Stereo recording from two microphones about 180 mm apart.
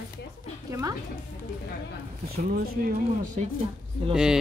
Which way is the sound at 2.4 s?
55° right (ahead or behind).